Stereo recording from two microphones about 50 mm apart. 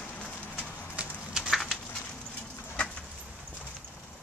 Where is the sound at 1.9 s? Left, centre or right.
Left.